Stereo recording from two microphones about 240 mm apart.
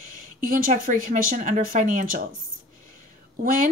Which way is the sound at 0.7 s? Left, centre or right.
Right.